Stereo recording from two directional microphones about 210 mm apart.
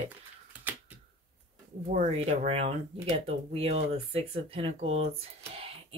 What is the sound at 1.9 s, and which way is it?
Speech, 30° right (ahead or behind).